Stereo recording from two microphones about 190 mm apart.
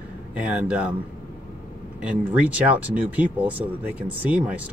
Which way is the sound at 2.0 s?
5° right (ahead or behind).